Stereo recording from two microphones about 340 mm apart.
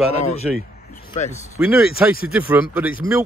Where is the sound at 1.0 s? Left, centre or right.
Left.